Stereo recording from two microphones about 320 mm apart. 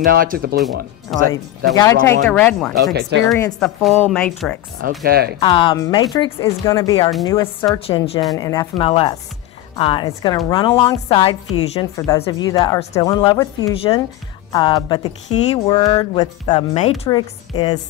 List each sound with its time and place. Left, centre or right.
0.0 s speech: right
1.1 s a woman's voice: centre
2.7 s speech: right
3.3 s a woman's voice: centre
4.8 s speech: right
5.4 s speech: centre